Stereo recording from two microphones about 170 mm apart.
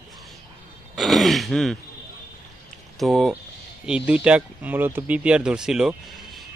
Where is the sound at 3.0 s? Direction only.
Centre (ahead or behind).